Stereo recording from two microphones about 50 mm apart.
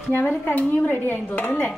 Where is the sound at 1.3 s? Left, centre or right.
Left.